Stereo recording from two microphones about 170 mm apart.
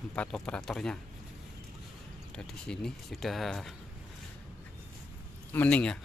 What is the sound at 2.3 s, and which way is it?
Speech, 5° left (ahead or behind).